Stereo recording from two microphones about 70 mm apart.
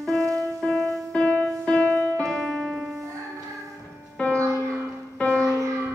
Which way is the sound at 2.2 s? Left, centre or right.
Centre.